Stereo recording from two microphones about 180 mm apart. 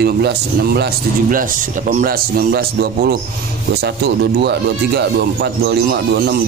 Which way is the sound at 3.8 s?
65° right (ahead or behind).